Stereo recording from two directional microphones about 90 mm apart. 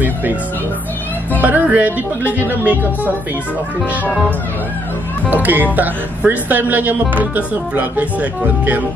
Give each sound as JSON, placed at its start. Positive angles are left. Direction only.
{"t": 0.0, "sound": "speech", "side_deg": -20}
{"t": 1.4, "sound": "speech", "side_deg": -20}
{"t": 5.3, "sound": "speech", "side_deg": -20}